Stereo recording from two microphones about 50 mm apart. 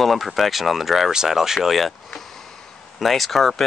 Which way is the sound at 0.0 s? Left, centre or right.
Centre.